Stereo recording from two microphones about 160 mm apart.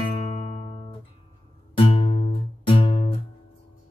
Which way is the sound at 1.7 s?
35° left (ahead or behind).